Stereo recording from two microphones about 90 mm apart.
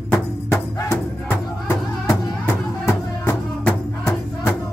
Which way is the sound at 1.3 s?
25° left (ahead or behind).